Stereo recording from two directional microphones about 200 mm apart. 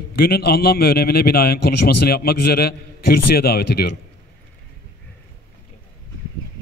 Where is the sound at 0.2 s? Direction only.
50° left (ahead or behind).